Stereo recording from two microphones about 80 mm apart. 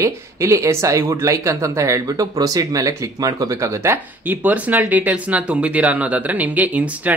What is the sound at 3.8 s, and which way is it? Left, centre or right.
Speech, right.